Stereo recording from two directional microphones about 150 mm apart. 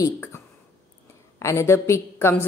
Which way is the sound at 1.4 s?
20° left (ahead or behind).